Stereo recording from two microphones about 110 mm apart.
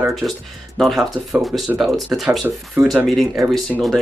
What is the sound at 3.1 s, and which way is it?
Speech, centre (ahead or behind).